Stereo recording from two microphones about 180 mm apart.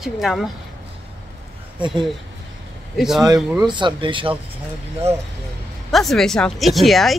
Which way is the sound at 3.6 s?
25° right (ahead or behind).